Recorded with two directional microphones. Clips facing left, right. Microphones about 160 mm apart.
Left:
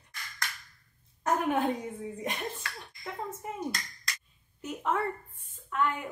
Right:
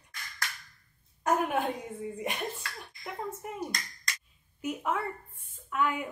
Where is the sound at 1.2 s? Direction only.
10° right (ahead or behind).